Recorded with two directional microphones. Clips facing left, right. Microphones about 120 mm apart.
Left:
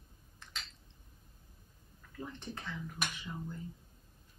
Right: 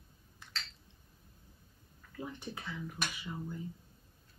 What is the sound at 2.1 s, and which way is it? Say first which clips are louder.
Speech: right 1 dB; 10° right (ahead or behind).